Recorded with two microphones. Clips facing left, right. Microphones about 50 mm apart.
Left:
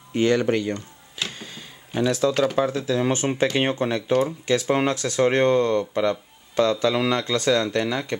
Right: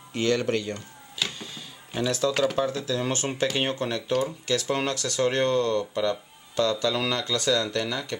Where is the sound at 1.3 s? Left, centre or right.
Centre.